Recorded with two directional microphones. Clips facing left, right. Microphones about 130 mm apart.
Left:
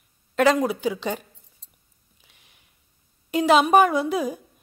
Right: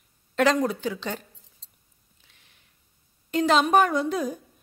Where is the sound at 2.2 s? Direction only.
15° left (ahead or behind).